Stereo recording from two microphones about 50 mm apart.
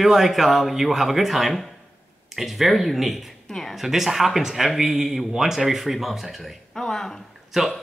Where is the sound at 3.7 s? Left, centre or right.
Centre.